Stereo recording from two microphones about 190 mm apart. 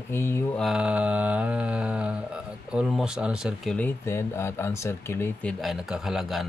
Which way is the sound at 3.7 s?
10° left (ahead or behind).